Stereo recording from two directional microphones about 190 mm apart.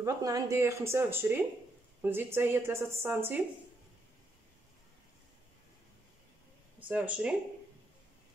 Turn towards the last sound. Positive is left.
turn(degrees=-5)  # may be behind; listen again after turning